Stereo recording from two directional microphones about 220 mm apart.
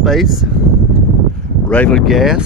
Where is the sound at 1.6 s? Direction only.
5° left (ahead or behind).